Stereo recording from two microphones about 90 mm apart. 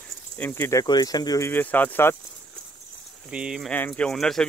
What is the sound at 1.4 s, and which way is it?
Speech, 20° left (ahead or behind).